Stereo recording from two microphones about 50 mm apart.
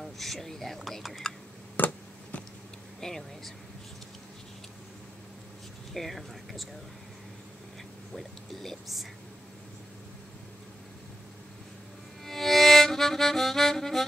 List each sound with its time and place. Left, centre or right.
0.0 s speech: centre
1.8 s a sound: left
3.0 s speech: centre
5.9 s speech: centre
8.1 s speech: centre
12.3 s music: centre